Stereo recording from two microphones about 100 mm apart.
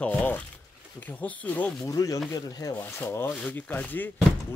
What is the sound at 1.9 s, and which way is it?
Speech, 30° left (ahead or behind).